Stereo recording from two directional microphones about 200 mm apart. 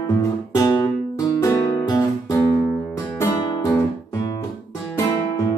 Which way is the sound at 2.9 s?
15° left (ahead or behind).